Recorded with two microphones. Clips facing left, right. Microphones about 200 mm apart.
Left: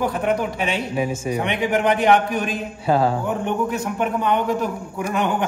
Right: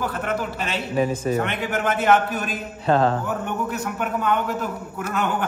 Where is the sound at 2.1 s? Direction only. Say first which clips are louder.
Left 2 dB; 5° right (ahead or behind).